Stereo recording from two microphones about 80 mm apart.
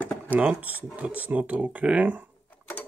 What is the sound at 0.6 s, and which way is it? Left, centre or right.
Speech, centre.